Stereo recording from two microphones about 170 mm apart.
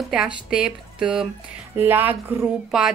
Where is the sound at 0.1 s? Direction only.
5° right (ahead or behind).